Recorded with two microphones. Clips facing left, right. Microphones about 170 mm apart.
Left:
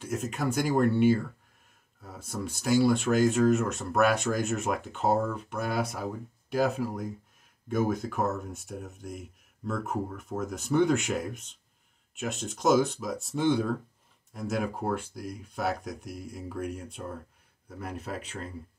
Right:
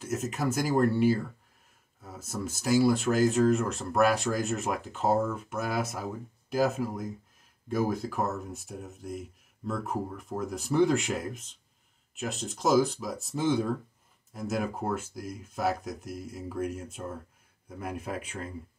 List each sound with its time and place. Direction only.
0.0 s speech: centre (ahead or behind)
3.6 s speech: 35° right (ahead or behind)
4.0 s speech: centre (ahead or behind)